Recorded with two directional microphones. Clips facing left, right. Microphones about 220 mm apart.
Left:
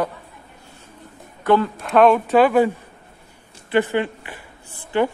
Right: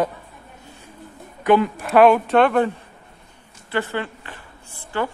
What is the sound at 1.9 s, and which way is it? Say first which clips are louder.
Speech: even; 5° right (ahead or behind).